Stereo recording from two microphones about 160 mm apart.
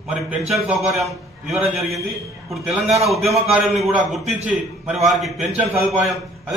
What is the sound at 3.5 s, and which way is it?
A man's voice, 5° right (ahead or behind).